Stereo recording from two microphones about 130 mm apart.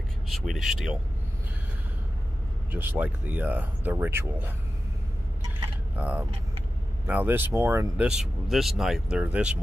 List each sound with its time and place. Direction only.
0.3 s speech: centre (ahead or behind)
2.7 s speech: 15° right (ahead or behind)
5.9 s speech: 10° right (ahead or behind)
8.0 s speech: centre (ahead or behind)